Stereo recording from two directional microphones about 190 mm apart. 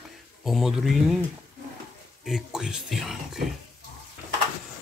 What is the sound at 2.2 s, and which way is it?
Speech, centre (ahead or behind).